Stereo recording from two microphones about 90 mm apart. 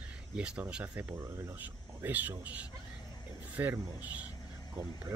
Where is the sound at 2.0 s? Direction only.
20° right (ahead or behind).